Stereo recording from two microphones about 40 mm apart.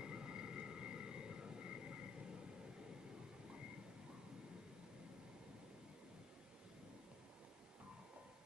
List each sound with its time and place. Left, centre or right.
0.0 s vehicle: right